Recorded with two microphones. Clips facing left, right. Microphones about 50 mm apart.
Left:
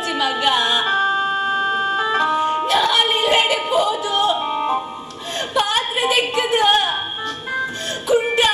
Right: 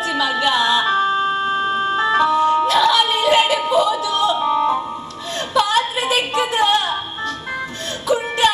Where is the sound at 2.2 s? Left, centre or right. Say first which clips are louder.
Right 3 dB; left.